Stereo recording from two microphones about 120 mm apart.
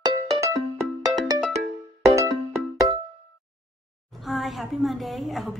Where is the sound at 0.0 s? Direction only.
30° right (ahead or behind).